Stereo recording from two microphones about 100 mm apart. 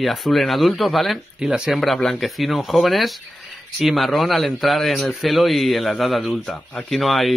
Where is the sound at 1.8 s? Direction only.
Centre (ahead or behind).